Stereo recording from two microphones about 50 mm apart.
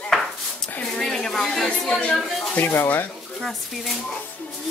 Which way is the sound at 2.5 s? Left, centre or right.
Left.